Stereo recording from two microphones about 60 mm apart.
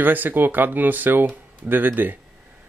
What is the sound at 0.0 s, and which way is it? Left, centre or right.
Speech, right.